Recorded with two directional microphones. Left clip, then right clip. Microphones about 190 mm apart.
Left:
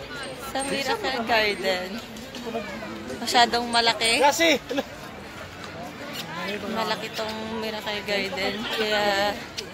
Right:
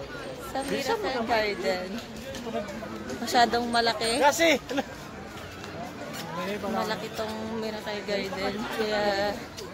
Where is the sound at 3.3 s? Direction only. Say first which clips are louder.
Left 3 dB; 20° right (ahead or behind).